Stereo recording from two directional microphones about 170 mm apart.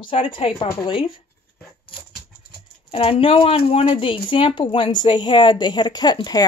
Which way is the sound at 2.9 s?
30° left (ahead or behind).